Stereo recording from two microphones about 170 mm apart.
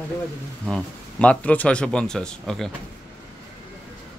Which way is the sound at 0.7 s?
10° left (ahead or behind).